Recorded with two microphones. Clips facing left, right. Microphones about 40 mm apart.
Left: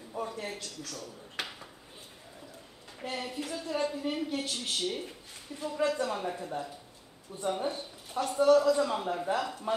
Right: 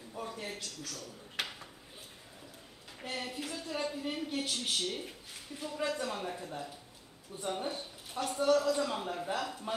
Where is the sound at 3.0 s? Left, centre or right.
Centre.